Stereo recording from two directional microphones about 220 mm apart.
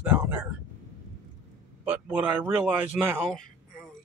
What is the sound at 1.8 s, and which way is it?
Speech, 5° right (ahead or behind).